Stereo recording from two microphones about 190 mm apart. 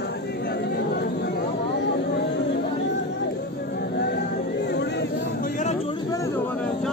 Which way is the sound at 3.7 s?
60° left (ahead or behind).